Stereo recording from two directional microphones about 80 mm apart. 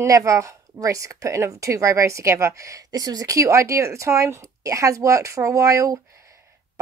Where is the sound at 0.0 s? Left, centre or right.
Right.